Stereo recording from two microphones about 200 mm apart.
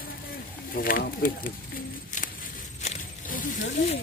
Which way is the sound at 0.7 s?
45° left (ahead or behind).